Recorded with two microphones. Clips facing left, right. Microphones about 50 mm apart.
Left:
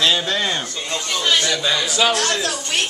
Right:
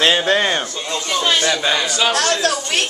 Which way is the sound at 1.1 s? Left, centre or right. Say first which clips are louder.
Right 2 dB; right.